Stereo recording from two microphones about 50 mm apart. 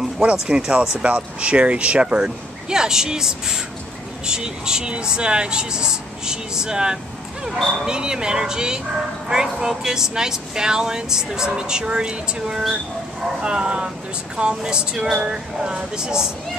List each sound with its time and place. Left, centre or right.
0.2 s speech: right